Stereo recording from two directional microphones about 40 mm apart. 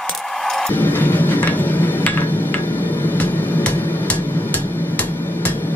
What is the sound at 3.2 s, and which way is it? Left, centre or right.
Music, left.